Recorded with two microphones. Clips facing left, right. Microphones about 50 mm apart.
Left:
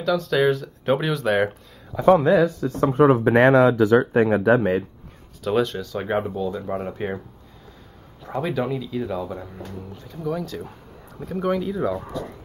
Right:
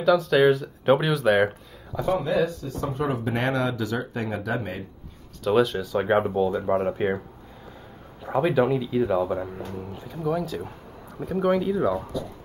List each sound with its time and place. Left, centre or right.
0.0 s speech: centre
2.0 s speech: left
3.9 s speech: left
5.4 s speech: centre; by 6.7 s right
6.7 s speech: centre
8.2 s speech: centre